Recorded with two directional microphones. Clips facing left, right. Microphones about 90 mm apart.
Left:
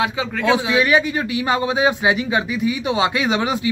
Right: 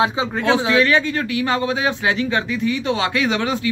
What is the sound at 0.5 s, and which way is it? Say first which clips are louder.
A man's voice: even; 15° left (ahead or behind).